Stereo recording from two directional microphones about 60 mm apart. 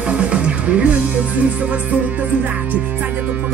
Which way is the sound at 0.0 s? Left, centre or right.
Centre.